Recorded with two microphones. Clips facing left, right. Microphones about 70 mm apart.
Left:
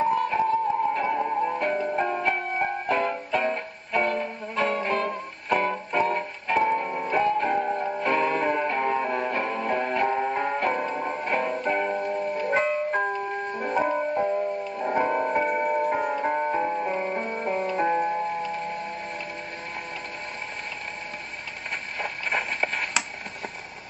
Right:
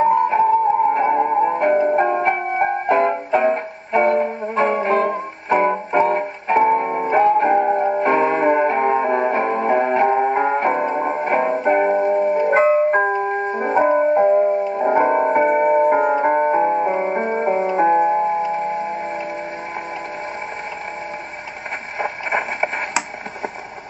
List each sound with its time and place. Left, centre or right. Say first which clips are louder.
0.1 s music: right 8 dB; right
12.0 s music: right 10 dB; centre
22.0 s a sound: right 7 dB; right